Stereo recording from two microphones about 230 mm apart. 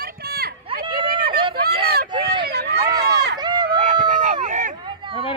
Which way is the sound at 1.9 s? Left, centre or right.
Right.